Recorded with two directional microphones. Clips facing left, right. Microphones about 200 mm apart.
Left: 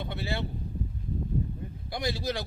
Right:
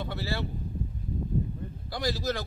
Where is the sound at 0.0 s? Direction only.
20° left (ahead or behind).